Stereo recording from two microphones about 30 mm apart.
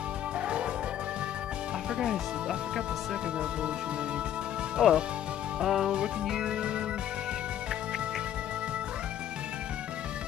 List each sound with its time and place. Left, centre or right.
2.0 s speech: right
4.7 s music: right
5.6 s speech: centre
6.2 s music: right